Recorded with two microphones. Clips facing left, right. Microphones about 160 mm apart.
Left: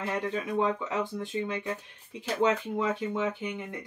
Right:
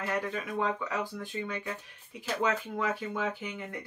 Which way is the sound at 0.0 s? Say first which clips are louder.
Left 2 dB; 25° left (ahead or behind).